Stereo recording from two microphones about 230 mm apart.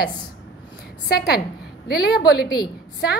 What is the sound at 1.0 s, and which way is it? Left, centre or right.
A woman's voice, left.